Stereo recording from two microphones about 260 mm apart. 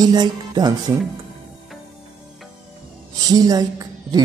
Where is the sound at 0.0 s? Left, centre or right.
Centre.